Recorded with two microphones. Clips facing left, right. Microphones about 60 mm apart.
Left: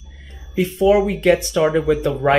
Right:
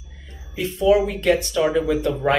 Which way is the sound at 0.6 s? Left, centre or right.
Left.